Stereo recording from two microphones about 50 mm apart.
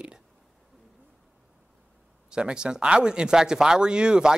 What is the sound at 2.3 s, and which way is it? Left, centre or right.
Speech, centre.